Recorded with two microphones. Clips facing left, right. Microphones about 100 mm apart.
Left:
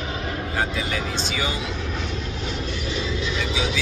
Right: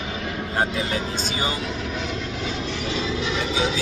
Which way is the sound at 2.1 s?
90° right.